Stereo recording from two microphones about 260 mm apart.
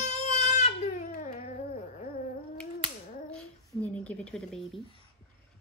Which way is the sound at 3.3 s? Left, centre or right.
Centre.